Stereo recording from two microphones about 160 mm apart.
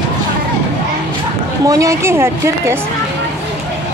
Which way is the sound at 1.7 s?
20° right (ahead or behind).